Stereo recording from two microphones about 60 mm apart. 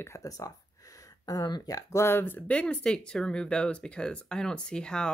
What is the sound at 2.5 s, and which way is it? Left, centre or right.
Speech, left.